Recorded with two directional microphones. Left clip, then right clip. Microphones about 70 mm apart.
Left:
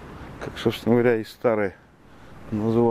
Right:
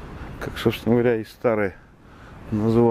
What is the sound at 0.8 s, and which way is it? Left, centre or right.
Speech, centre.